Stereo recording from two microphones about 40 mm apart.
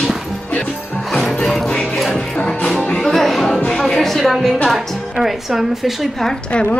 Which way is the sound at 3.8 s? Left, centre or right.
Centre.